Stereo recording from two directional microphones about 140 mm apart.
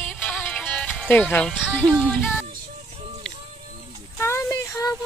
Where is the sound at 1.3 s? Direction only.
5° left (ahead or behind).